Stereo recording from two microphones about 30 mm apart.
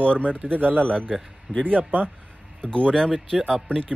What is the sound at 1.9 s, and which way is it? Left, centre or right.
Speech, right.